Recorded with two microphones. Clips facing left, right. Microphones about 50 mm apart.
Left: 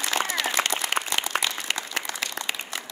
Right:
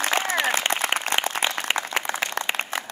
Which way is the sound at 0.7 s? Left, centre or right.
Right.